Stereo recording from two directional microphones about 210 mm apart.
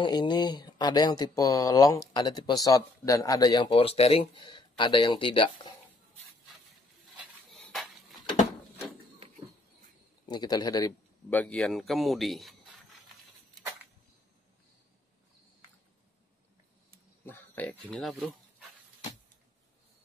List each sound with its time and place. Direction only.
0.0 s speech: 20° left (ahead or behind)
7.5 s a sound: centre (ahead or behind)
10.2 s speech: 20° left (ahead or behind)
11.2 s speech: 5° left (ahead or behind)
17.2 s speech: 10° left (ahead or behind)